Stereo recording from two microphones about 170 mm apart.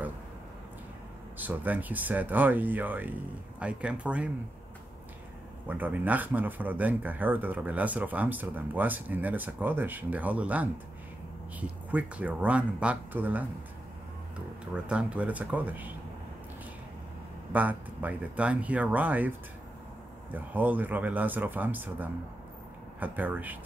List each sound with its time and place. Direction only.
1.4 s speech: 10° right (ahead or behind)
5.7 s speech: 10° right (ahead or behind)
11.9 s speech: 10° right (ahead or behind)
14.7 s speech: 5° right (ahead or behind)
17.5 s speech: 10° right (ahead or behind)
20.3 s speech: 10° right (ahead or behind)